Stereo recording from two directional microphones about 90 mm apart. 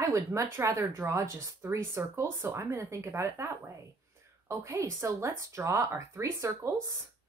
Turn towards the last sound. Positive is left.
turn(degrees=-35)  # may be behind; listen again after turning